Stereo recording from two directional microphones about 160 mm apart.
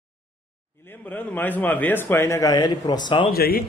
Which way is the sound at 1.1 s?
10° left (ahead or behind).